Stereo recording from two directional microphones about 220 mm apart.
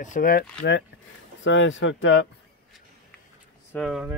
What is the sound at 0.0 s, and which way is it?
Speech, 35° left (ahead or behind).